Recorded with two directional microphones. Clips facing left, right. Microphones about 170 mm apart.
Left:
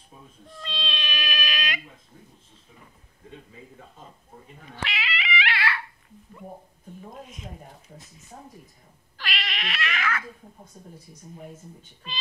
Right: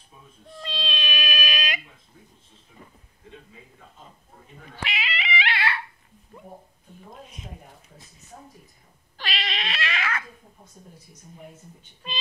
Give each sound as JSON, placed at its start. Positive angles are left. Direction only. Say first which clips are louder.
{"t": 0.6, "sound": "baby cry", "louder": "right 2 dB", "side_deg": -15}
{"t": 4.8, "sound": "dog", "louder": "right 1 dB", "side_deg": -20}
{"t": 9.1, "sound": "cat", "louder": "right 2 dB", "side_deg": -25}